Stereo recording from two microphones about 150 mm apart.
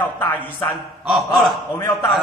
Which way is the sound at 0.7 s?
Centre (ahead or behind).